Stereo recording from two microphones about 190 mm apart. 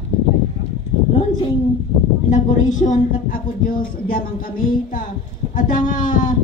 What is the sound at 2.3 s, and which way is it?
A woman's voice, 40° left (ahead or behind).